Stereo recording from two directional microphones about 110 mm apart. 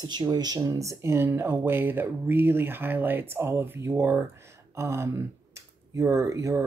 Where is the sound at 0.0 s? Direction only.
40° right (ahead or behind).